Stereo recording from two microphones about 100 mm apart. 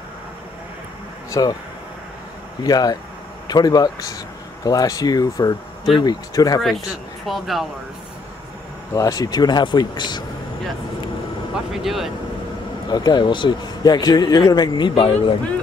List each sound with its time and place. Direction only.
1.3 s speech: 40° left (ahead or behind)
2.6 s speech: 40° left (ahead or behind)
7.2 s speech: centre (ahead or behind)
8.9 s speech: 35° left (ahead or behind)
11.5 s speech: centre (ahead or behind)
12.9 s speech: 45° left (ahead or behind)